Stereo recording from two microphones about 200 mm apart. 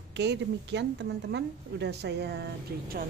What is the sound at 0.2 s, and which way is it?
A woman's voice, 60° right (ahead or behind).